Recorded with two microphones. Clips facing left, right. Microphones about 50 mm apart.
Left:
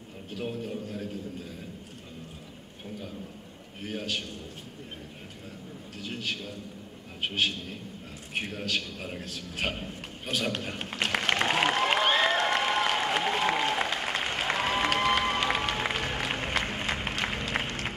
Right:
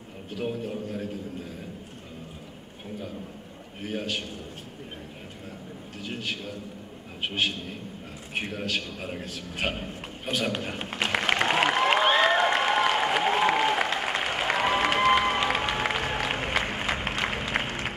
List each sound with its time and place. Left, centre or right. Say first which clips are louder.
0.5 s speech: right 3 dB; centre
3.8 s speech: right 2 dB; centre
6.0 s speech: right 1 dB; centre
8.4 s a sound: right 2 dB; centre
15.1 s applause: right 3 dB; centre